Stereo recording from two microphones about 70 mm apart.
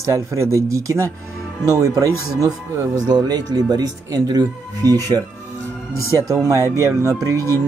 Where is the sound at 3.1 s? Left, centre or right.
Right.